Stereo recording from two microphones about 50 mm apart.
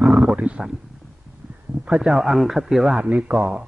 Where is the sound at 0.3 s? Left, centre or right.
Centre.